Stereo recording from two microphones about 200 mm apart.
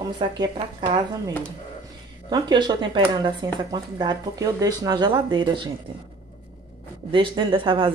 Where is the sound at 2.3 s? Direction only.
20° right (ahead or behind).